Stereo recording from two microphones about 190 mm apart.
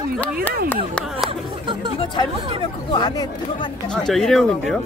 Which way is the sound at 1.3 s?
25° right (ahead or behind).